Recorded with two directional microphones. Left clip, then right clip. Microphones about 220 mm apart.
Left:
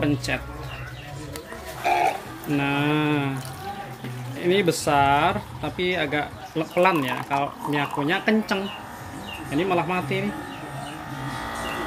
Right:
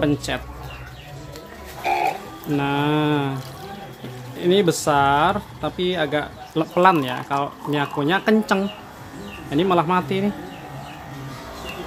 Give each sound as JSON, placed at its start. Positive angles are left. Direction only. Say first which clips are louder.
{"t": 0.0, "sound": "speech", "louder": "right 3 dB", "side_deg": -20}
{"t": 1.8, "sound": "a sound", "louder": "even", "side_deg": -5}
{"t": 4.4, "sound": "speech", "louder": "right 3 dB", "side_deg": -10}